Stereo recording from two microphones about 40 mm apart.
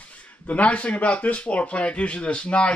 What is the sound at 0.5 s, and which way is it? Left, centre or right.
Speech, left.